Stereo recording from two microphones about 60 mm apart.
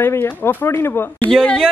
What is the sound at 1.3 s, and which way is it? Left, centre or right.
Speech, centre.